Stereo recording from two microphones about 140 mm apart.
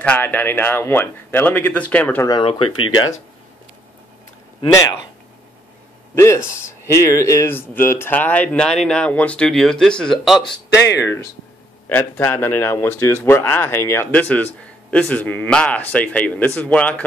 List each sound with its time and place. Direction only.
0.0 s speech: 10° left (ahead or behind)
4.6 s speech: 25° left (ahead or behind)
6.1 s speech: 20° left (ahead or behind); by 10.5 s centre (ahead or behind)
10.9 s speech: 20° left (ahead or behind)